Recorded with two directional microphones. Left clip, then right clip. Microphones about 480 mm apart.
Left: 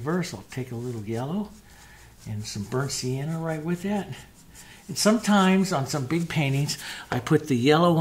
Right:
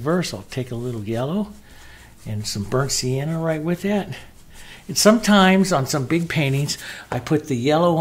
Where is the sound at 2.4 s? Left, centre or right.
Right.